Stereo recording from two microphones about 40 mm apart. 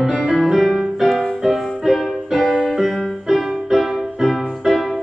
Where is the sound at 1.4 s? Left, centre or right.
Centre.